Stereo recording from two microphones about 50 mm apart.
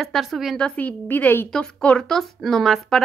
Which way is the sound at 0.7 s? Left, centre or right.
Left.